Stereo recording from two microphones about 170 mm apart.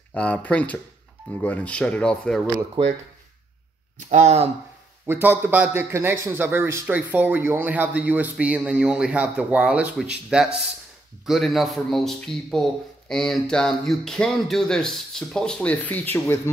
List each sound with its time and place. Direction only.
0.1 s speech: 10° left (ahead or behind)
2.8 s speech: 30° right (ahead or behind)
4.1 s speech: 40° right (ahead or behind)
5.0 s a man's voice: 10° right (ahead or behind); by 16.3 s 10° left (ahead or behind)